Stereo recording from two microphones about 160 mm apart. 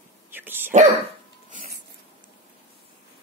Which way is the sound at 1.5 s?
55° right (ahead or behind).